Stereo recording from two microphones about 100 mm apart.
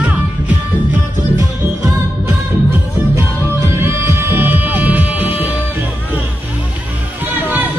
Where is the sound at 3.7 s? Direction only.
25° right (ahead or behind).